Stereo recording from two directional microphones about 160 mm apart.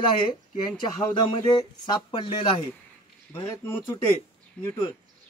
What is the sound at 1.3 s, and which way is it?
Speech, 30° left (ahead or behind).